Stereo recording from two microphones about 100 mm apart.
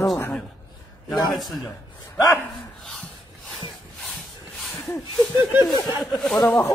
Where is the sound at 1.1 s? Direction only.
Centre (ahead or behind).